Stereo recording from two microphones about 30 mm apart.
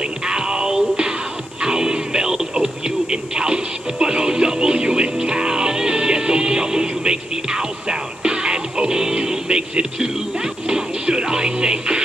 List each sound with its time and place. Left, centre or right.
0.3 s music: right
1.6 s radio: right
10.7 s music: right